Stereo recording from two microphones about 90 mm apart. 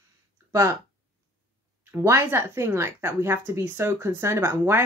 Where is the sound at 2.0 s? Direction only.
30° right (ahead or behind).